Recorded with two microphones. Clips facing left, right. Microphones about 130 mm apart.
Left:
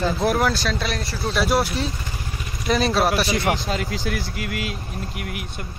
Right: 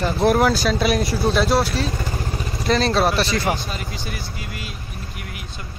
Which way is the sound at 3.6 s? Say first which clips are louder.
Left 5 dB; 90° left.